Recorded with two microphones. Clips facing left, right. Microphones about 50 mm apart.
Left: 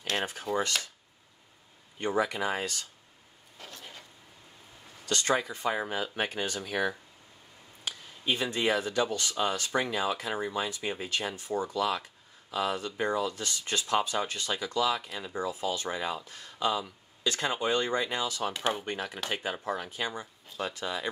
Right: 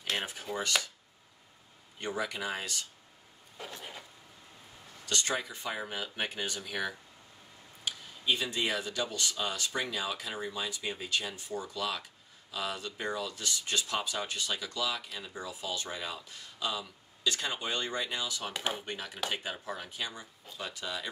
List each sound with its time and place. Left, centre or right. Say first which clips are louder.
2.0 s speech: left 6 dB; left
3.5 s a sound: right 3 dB; centre
5.0 s speech: left 5 dB; left